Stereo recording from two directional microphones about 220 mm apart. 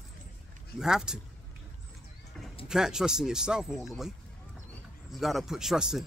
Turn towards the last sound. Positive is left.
turn(degrees=0)  # may be behind; listen again after turning